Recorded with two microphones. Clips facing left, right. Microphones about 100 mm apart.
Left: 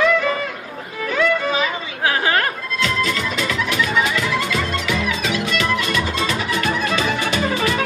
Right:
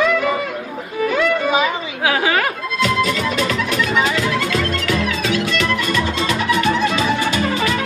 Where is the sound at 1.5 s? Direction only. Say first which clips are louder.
Right 4 dB; 10° right (ahead or behind); by 6.9 s 5° left (ahead or behind).